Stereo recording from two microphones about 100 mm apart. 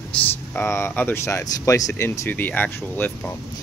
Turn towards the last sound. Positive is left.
turn(degrees=20)  # may be behind; listen again after turning